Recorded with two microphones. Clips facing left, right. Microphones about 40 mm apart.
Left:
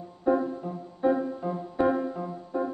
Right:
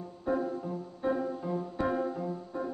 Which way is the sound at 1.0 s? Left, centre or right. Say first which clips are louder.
Left 6 dB; centre.